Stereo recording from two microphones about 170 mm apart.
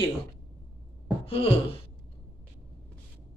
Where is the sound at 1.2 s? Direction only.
35° left (ahead or behind).